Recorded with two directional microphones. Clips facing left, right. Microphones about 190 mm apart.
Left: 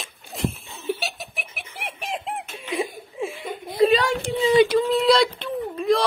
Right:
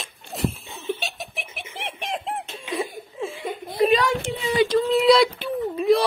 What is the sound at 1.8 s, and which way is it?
Bird, centre (ahead or behind).